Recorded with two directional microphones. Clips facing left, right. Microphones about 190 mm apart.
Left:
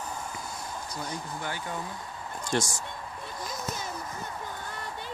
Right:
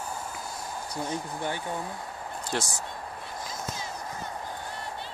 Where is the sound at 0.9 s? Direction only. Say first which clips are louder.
Right 6 dB; 25° right (ahead or behind).